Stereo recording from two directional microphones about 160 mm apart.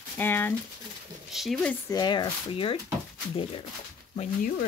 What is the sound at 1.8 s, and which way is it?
Speech, 25° left (ahead or behind).